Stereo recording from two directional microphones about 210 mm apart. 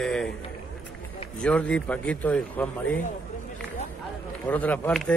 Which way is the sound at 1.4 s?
5° left (ahead or behind).